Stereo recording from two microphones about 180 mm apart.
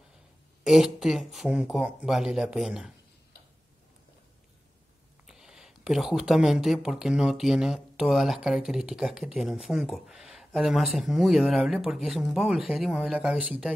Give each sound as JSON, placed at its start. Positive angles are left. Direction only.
{"t": 0.7, "sound": "speech", "side_deg": -5}
{"t": 5.2, "sound": "speech", "side_deg": -5}